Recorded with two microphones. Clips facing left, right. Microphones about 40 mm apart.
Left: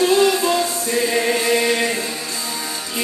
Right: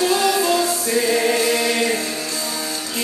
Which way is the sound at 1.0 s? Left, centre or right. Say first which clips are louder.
Right 1 dB; centre.